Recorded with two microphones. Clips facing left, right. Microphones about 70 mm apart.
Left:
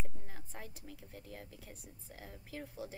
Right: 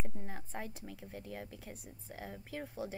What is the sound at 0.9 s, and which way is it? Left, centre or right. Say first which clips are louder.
A woman's voice: right 5 dB; right.